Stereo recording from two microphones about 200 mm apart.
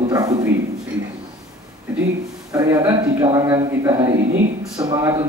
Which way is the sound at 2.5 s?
15° right (ahead or behind).